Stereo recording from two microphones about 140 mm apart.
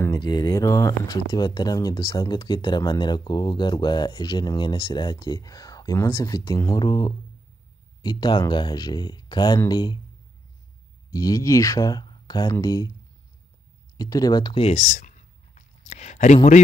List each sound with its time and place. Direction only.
0.0 s speech: 30° left (ahead or behind)
11.1 s speech: 25° left (ahead or behind)
13.9 s speech: 25° left (ahead or behind)
14.6 s a sound: 55° left (ahead or behind)